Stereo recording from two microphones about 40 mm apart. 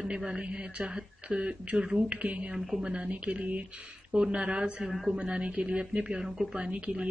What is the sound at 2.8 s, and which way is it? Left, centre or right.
Speech, right.